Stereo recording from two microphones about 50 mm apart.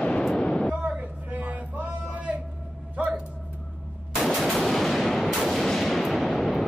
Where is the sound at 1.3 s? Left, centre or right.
Right.